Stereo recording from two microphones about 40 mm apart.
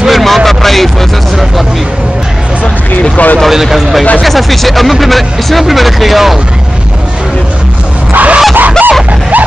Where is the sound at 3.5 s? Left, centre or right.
Centre.